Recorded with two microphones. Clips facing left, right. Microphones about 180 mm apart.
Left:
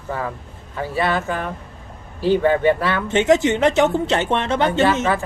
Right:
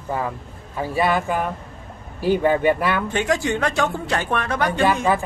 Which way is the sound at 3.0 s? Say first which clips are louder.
Left 6 dB; 20° left (ahead or behind).